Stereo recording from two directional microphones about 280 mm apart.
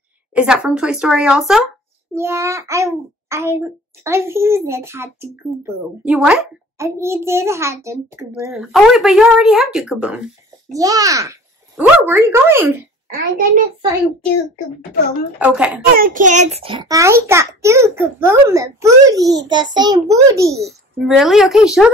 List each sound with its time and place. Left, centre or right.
0.3 s a woman's voice: centre
10.7 s a child's voice: centre
13.2 s a child's voice: right
15.3 s a woman's voice: centre
15.9 s a child's voice: right; by 20.5 s centre
20.5 s a woman's voice: centre